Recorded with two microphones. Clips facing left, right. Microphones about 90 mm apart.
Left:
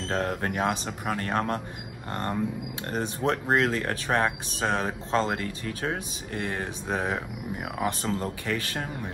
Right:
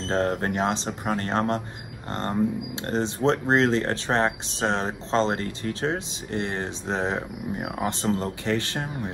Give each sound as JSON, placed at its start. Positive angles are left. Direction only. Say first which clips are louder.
{"t": 0.1, "sound": "speech", "louder": "right 4 dB", "side_deg": -25}